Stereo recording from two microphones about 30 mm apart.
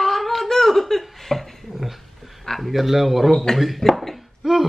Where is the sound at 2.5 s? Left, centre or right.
Centre.